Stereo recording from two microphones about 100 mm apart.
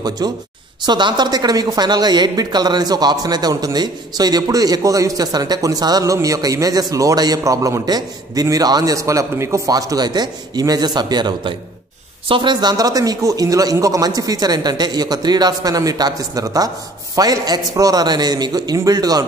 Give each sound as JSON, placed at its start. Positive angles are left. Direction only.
{"t": 0.2, "sound": "a man's voice", "side_deg": -45}